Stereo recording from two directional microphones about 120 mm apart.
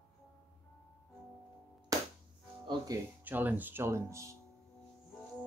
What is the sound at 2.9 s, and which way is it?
Speech, 30° right (ahead or behind).